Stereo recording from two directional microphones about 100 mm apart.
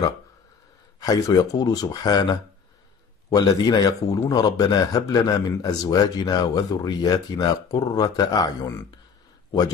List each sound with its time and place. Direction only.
0.9 s a man's voice: 40° left (ahead or behind)